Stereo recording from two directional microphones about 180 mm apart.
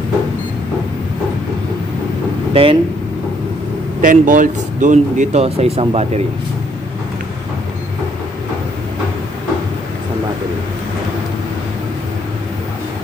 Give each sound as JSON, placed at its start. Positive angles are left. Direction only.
{"t": 2.5, "sound": "speech", "side_deg": -30}
{"t": 4.0, "sound": "speech", "side_deg": -45}